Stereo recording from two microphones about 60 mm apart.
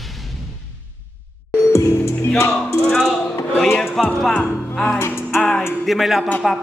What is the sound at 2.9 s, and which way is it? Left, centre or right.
Music, centre.